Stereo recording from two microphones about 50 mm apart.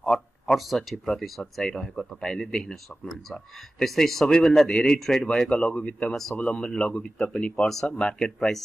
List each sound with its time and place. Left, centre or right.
0.1 s speech: centre
3.8 s speech: centre; by 7.6 s left
7.6 s speech: centre
7.9 s speech: centre